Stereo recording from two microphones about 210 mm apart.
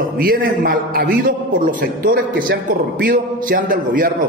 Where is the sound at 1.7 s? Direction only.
40° right (ahead or behind).